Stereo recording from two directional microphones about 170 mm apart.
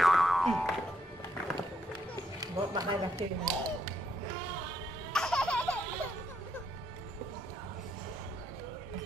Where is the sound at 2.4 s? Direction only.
20° right (ahead or behind).